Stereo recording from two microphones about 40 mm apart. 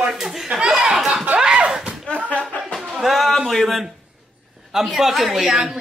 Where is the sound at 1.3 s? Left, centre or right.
Right.